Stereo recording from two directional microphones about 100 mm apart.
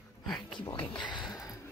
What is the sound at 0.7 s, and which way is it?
Speech, 50° left (ahead or behind).